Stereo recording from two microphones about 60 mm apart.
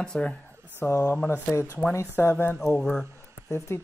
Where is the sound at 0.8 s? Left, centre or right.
Left.